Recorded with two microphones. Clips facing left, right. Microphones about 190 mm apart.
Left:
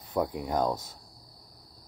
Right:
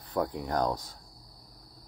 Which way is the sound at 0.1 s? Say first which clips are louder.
Left 1 dB; 10° left (ahead or behind).